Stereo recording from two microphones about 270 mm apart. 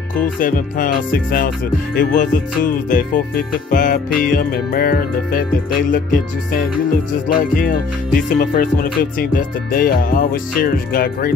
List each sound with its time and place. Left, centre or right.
0.4 s music: left